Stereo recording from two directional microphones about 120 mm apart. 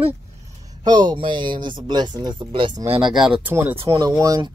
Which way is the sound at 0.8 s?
40° right (ahead or behind).